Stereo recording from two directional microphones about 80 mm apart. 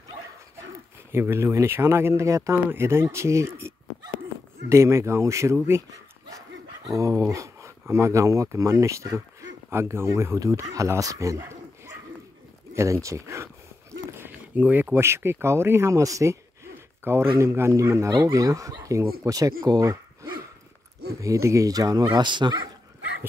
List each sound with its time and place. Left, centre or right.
1.1 s speech: right
6.9 s speech: right
14.1 s speech: right